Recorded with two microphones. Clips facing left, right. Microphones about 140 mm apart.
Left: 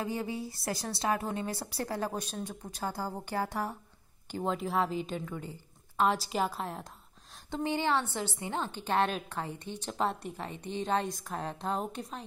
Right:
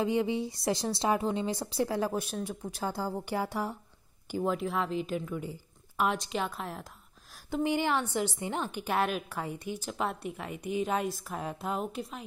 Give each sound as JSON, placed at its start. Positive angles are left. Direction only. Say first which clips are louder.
{"t": 0.1, "sound": "a woman's voice", "louder": "right 6 dB", "side_deg": -20}
{"t": 2.9, "sound": "a woman's voice", "louder": "right 3 dB", "side_deg": 15}
{"t": 3.3, "sound": "a woman's voice", "louder": "left 1 dB", "side_deg": -10}
{"t": 4.5, "sound": "speech", "louder": "left 1 dB", "side_deg": 0}
{"t": 7.5, "sound": "a woman's voice", "louder": "right 2 dB", "side_deg": -15}